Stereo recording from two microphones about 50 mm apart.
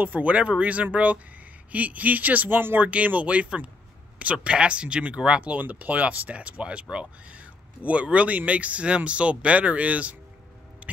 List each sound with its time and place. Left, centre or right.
0.0 s speech: right